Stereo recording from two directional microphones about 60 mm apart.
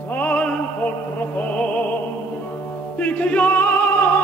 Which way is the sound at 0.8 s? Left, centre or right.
Left.